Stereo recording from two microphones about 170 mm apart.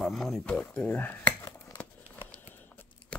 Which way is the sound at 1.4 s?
20° left (ahead or behind).